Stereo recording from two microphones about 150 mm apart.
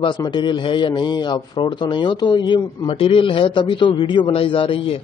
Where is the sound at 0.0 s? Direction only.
30° left (ahead or behind).